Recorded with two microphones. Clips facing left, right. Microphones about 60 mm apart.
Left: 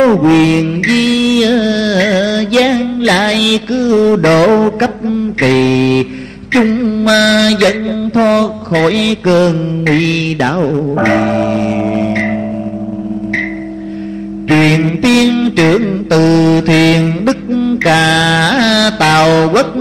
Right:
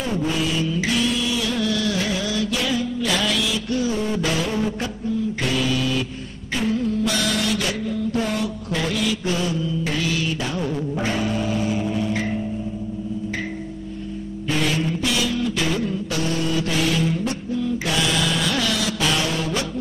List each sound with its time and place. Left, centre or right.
0.0 s music: left
6.5 s mantra: left
14.5 s mantra: left